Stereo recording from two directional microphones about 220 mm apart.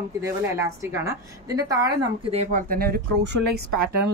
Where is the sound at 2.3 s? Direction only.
30° right (ahead or behind); by 3.4 s 50° right (ahead or behind).